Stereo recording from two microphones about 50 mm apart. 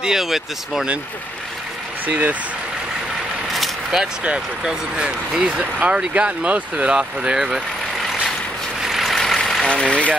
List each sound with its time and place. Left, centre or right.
0.0 s speech: centre
2.0 s speech: right
3.5 s vehicle: centre
4.0 s speech: centre
8.8 s vehicle: centre
9.1 s vehicle: centre
9.7 s speech: left